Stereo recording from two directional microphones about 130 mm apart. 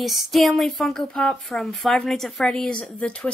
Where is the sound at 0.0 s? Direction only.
Centre (ahead or behind).